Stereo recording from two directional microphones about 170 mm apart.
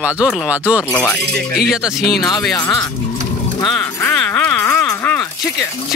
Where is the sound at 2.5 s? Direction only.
20° left (ahead or behind).